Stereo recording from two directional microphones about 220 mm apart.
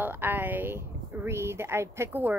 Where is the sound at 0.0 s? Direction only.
10° right (ahead or behind).